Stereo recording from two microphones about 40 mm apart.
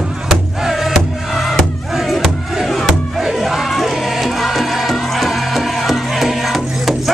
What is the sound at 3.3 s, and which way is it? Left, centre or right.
Music, centre.